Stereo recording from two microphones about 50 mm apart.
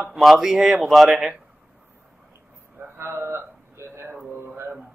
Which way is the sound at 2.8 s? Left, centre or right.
Right.